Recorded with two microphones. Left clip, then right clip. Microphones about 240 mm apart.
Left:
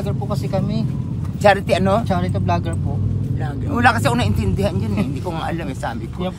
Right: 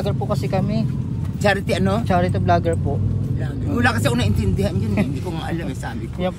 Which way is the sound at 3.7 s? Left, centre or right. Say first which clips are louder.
Left 4 dB; centre.